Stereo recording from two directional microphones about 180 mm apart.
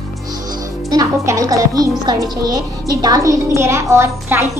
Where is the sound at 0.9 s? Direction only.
15° right (ahead or behind).